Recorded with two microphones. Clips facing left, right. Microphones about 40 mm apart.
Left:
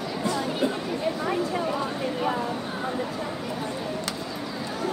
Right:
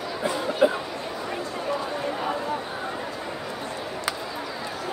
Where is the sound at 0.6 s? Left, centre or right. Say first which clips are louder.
Right 7 dB; right.